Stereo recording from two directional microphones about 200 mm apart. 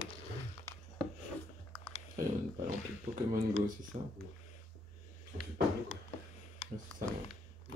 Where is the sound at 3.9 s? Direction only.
40° right (ahead or behind).